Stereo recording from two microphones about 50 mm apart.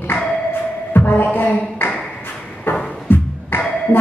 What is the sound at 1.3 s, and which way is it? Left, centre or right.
Speech, left.